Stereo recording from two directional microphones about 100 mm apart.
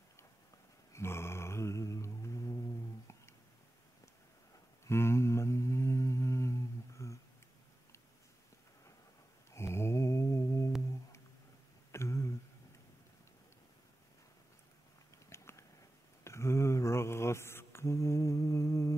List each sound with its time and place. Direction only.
0.9 s a sound: 25° left (ahead or behind)
4.8 s mantra: 25° left (ahead or behind)
9.5 s mantra: 25° left (ahead or behind)
11.9 s a sound: 30° left (ahead or behind)
15.2 s biting: 30° left (ahead or behind)
16.3 s mantra: 25° left (ahead or behind)